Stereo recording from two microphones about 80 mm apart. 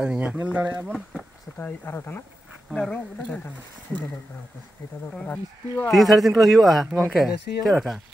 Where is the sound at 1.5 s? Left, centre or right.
Left.